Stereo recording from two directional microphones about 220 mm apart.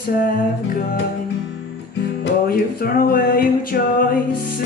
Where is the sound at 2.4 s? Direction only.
40° left (ahead or behind).